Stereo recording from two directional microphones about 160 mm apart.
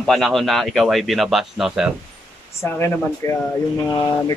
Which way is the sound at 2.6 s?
15° left (ahead or behind).